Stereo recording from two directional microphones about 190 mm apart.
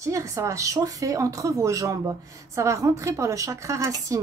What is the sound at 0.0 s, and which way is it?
A woman's voice, 15° right (ahead or behind).